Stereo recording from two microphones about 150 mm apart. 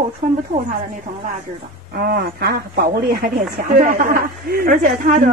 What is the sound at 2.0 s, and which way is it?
Speech, 90° right.